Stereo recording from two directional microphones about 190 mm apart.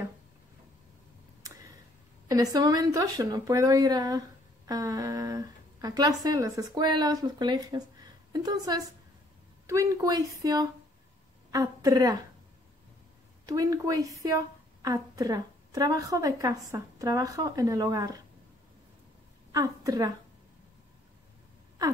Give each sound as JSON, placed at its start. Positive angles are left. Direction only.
{"t": 1.4, "sound": "a sound", "side_deg": -15}
{"t": 2.2, "sound": "a woman's voice", "side_deg": -20}
{"t": 13.5, "sound": "a woman's voice", "side_deg": -20}
{"t": 19.5, "sound": "a woman's voice", "side_deg": -20}